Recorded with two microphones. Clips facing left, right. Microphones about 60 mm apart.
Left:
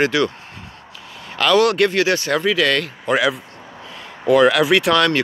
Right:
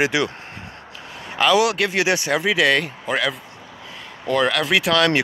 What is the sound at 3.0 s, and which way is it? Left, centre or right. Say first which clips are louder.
Speech: left 5 dB; centre.